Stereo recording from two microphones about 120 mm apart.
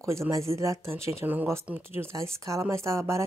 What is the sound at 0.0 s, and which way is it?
Speech, 25° right (ahead or behind).